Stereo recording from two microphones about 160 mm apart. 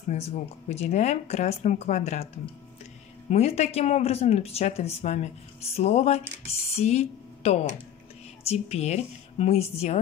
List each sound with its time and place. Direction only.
0.1 s speech: 40° left (ahead or behind)
3.3 s a woman's voice: 40° left (ahead or behind)